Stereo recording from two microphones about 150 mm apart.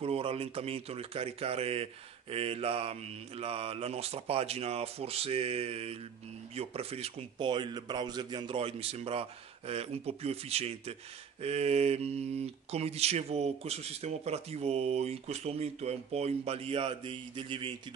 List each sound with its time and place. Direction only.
0.0 s speech: 40° right (ahead or behind)